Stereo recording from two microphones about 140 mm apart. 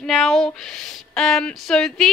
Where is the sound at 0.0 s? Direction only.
Centre (ahead or behind).